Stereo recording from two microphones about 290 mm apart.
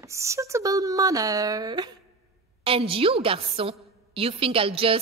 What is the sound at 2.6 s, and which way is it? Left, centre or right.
A woman's voice, centre.